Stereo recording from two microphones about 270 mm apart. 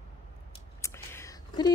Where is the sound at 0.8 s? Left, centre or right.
Centre.